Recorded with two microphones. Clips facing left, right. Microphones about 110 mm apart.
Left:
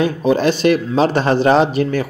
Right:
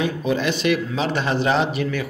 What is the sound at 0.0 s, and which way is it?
Speech, 35° left (ahead or behind).